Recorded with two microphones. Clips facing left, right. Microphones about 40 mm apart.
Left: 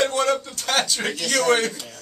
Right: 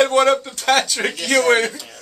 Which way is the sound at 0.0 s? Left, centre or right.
Right.